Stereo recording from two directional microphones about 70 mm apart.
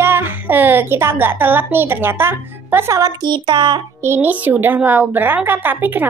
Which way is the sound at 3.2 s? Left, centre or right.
Right.